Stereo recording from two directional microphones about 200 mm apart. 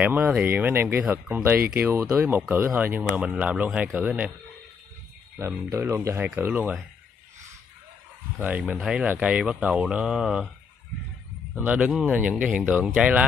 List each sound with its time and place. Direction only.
0.0 s speech: 10° right (ahead or behind)
5.4 s speech: 15° right (ahead or behind)
8.4 s speech: 10° right (ahead or behind)
11.5 s speech: 5° right (ahead or behind)